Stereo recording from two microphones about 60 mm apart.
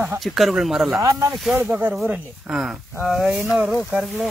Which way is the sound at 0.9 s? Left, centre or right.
Right.